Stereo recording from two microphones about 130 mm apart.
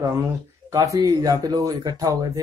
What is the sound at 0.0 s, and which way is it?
Speech, 25° right (ahead or behind).